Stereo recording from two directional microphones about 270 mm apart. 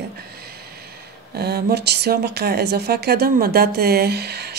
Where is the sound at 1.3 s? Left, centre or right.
Right.